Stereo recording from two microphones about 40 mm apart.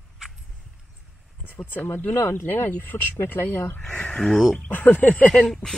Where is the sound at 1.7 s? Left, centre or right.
Left.